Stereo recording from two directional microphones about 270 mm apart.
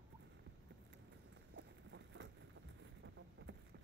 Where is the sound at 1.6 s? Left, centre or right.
Right.